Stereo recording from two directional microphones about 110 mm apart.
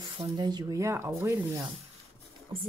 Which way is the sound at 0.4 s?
40° right (ahead or behind).